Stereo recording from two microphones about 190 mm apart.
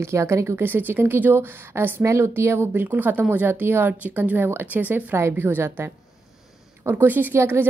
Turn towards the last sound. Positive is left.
turn(degrees=-10)  # may be behind; listen again after turning